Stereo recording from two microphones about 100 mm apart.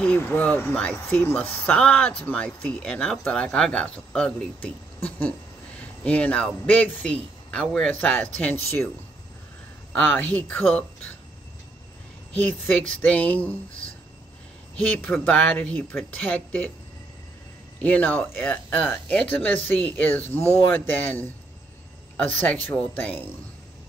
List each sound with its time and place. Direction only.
0.0 s speech: 15° left (ahead or behind)
9.9 s speech: 15° left (ahead or behind)
12.4 s speech: 15° left (ahead or behind)
17.8 s speech: 15° left (ahead or behind)
22.5 s speech: 15° left (ahead or behind)